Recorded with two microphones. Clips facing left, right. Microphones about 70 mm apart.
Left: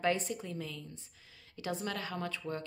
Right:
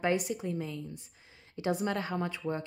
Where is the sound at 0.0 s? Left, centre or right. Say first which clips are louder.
Right 3 dB; centre.